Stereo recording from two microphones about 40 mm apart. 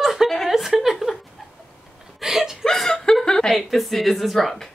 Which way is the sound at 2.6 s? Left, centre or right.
Centre.